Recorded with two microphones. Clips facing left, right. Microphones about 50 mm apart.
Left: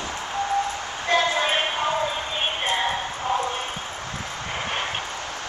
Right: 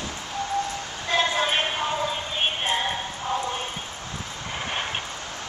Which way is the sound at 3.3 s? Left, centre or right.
Left.